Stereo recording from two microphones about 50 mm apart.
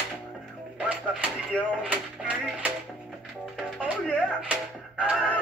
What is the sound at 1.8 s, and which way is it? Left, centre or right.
Music, right.